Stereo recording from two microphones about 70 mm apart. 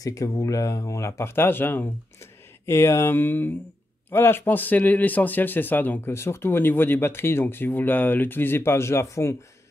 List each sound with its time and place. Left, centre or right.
0.0 s speech: left
1.3 s speech: left
6.1 s speech: left